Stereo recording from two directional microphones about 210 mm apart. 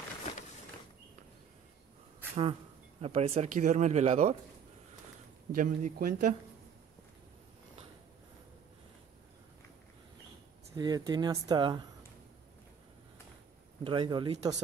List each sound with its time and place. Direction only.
3.0 s speech: 30° right (ahead or behind)
5.5 s speech: 40° right (ahead or behind)
10.8 s speech: 20° right (ahead or behind)
13.8 s speech: 25° right (ahead or behind)